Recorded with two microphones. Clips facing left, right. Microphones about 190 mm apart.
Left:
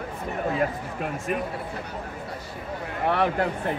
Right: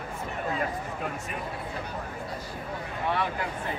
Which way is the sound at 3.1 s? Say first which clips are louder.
Left 7 dB; 60° left (ahead or behind).